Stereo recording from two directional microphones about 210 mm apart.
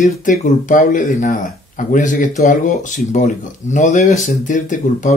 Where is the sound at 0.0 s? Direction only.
35° left (ahead or behind).